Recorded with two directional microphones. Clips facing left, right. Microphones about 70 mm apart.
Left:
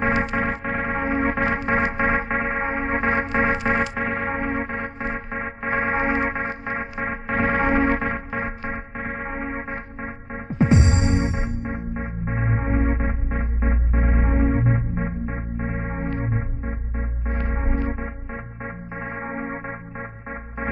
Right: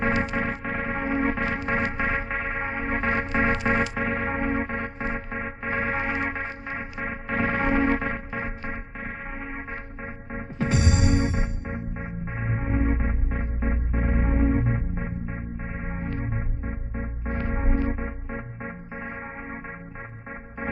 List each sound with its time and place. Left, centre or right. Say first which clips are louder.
0.0 s music: left 3 dB; left